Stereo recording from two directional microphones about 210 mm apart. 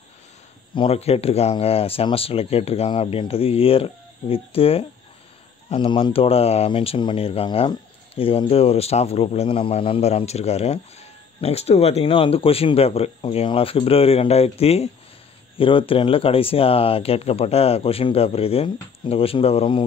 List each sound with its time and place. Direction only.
0.7 s speech: 30° left (ahead or behind)